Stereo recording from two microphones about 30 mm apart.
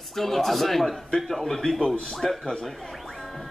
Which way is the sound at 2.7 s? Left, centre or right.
Centre.